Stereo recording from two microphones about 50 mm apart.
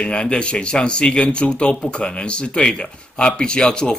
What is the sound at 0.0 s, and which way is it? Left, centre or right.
Speech, centre.